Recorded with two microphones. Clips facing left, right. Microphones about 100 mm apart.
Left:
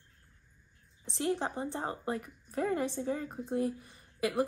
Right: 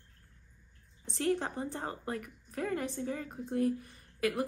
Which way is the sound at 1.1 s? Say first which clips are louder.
Right 1 dB; 20° left (ahead or behind).